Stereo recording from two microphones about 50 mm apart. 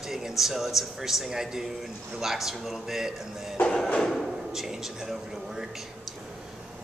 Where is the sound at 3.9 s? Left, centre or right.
Centre.